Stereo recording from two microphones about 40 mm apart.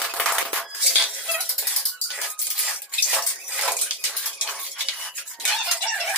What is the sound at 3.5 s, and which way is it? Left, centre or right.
Bathtub, centre.